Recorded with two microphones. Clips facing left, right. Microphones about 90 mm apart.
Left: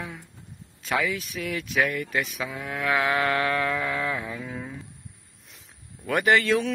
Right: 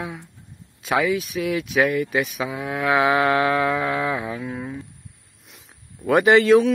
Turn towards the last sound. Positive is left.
turn(degrees=-20)  # may be behind; listen again after turning